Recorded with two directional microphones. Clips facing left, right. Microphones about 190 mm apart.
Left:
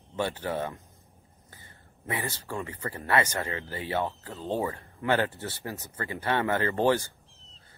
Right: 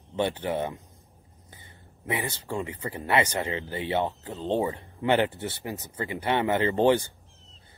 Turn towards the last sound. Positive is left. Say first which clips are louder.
# right 3 dB
turn(degrees=-20)  # may be behind; listen again after turning